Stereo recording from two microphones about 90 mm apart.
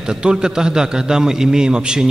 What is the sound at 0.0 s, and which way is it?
A man's voice, 10° right (ahead or behind).